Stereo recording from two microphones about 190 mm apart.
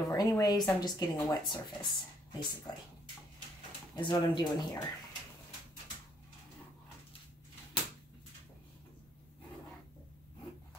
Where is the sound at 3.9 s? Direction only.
25° left (ahead or behind).